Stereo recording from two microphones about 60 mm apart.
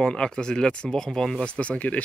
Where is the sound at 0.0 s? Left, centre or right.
Centre.